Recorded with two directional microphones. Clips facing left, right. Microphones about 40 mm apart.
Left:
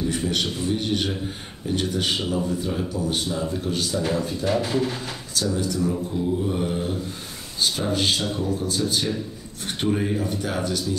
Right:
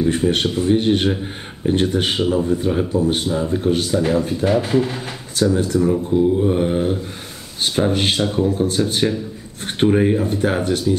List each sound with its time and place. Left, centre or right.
0.0 s speech: right
2.1 s speech: right
4.5 s speech: centre
5.3 s speech: right